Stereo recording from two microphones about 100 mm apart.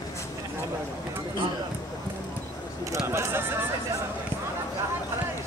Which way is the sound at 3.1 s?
25° right (ahead or behind).